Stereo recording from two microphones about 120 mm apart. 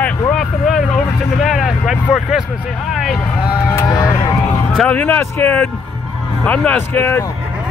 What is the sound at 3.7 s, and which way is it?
Speech, 30° left (ahead or behind).